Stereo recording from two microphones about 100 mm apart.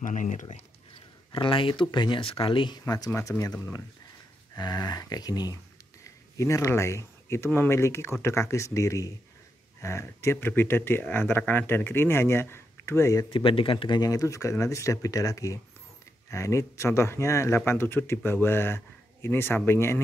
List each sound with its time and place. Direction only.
1.3 s speech: 60° left (ahead or behind)
2.8 s speech: 40° left (ahead or behind)
4.6 s speech: 45° left (ahead or behind)
6.3 s speech: 30° left (ahead or behind)
13.3 s speech: 60° left (ahead or behind); by 20.0 s 25° left (ahead or behind)